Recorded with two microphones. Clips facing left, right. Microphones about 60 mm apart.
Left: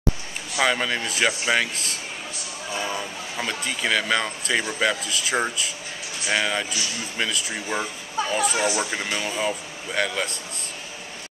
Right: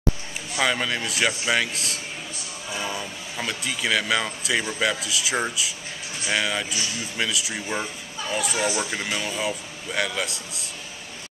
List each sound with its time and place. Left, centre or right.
0.6 s speech: centre
7.6 s speech: centre
8.3 s speech: centre
8.5 s speech: centre
8.9 s speech: centre